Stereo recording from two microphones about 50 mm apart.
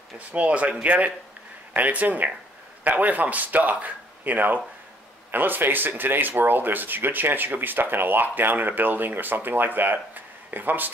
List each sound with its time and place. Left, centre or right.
0.3 s speech: right